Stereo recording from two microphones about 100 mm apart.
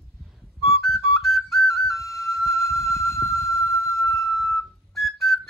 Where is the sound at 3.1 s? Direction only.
30° left (ahead or behind).